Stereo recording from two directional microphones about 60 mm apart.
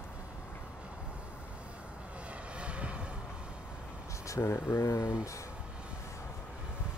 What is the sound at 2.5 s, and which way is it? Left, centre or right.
Vehicle, centre.